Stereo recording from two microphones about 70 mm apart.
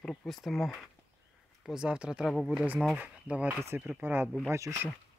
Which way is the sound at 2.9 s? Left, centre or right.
Right.